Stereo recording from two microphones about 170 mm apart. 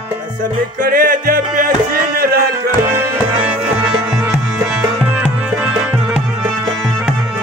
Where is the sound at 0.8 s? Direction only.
60° right (ahead or behind).